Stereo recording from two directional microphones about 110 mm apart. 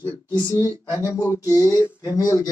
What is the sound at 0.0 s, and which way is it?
Speech, 40° left (ahead or behind).